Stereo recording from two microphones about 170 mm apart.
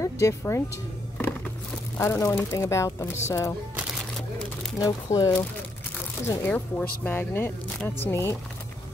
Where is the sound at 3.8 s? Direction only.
5° right (ahead or behind).